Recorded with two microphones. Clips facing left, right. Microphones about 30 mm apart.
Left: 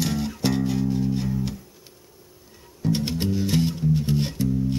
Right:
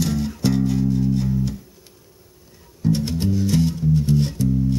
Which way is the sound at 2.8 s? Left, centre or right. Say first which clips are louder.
Right 3 dB; centre.